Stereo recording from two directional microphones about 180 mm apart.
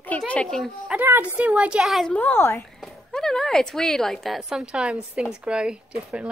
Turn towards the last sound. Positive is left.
turn(degrees=-5)  # may be behind; listen again after turning